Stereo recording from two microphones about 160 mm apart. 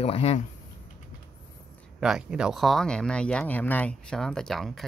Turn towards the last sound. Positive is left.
turn(degrees=0)  # may be behind; listen again after turning